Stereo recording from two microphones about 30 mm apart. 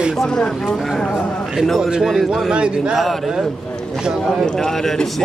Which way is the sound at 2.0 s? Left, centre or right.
Centre.